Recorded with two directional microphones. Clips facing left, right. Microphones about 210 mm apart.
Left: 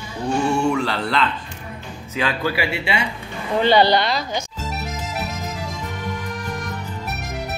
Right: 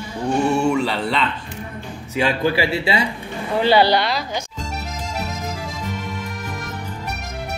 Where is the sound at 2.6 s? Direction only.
35° right (ahead or behind).